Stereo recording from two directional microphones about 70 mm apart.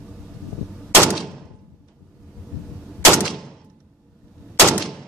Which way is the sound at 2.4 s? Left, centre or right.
Centre.